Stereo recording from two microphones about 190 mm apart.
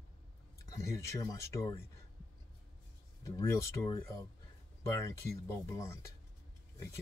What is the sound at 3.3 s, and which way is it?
Speech, 15° left (ahead or behind).